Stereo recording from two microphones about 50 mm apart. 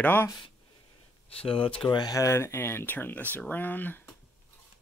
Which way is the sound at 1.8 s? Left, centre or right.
Left.